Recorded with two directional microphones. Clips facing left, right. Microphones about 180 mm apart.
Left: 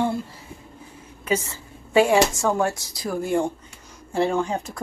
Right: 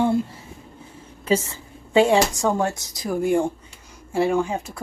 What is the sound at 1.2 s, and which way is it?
Speech, 20° right (ahead or behind).